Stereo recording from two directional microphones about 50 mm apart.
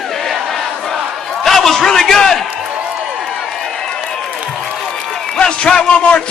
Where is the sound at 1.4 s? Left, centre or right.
Centre.